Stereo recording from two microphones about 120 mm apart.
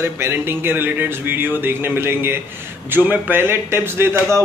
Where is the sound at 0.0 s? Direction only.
20° right (ahead or behind).